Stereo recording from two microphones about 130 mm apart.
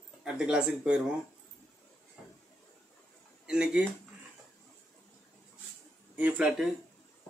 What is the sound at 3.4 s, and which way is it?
Speech, 5° right (ahead or behind).